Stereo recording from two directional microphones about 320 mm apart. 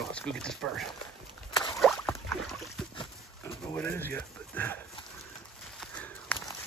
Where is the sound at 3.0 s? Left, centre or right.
Centre.